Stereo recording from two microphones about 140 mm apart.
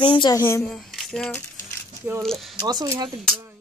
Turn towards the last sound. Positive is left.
turn(degrees=-30)  # may be behind; listen again after turning